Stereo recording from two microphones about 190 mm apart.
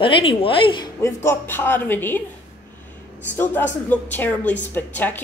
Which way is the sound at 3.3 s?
10° left (ahead or behind).